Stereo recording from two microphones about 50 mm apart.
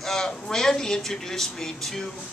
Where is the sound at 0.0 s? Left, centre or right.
Centre.